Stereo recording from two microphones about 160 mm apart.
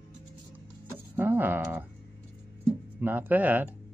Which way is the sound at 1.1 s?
10° right (ahead or behind).